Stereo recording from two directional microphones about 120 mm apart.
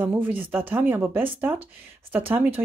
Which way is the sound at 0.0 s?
15° right (ahead or behind).